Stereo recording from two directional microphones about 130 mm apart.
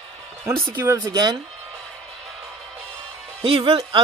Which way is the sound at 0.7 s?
20° right (ahead or behind).